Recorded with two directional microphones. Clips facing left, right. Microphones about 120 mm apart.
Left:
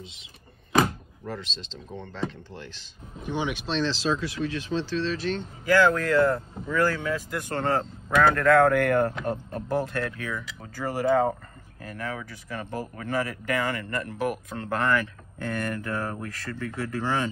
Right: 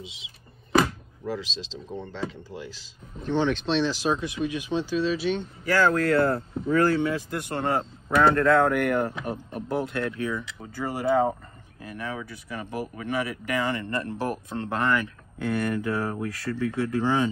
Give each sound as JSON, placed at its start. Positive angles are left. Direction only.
{"t": 0.0, "sound": "speech", "side_deg": 0}
{"t": 3.2, "sound": "speech", "side_deg": 10}
{"t": 3.8, "sound": "speech", "side_deg": -15}
{"t": 6.0, "sound": "speech", "side_deg": -35}
{"t": 7.5, "sound": "speech", "side_deg": -15}
{"t": 8.4, "sound": "speech", "side_deg": -25}